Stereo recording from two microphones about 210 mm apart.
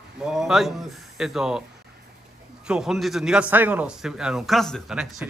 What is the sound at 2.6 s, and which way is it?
Speech, 5° right (ahead or behind).